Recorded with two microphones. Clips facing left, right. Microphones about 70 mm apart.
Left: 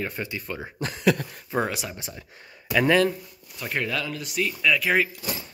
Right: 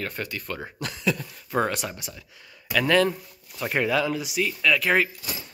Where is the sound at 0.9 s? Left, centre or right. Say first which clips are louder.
Left 5 dB; left.